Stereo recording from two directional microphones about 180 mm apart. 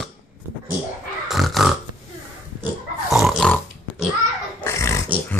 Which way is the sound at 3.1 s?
Centre (ahead or behind).